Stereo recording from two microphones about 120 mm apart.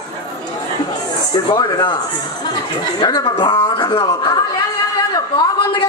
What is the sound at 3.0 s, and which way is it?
Speech, 35° left (ahead or behind).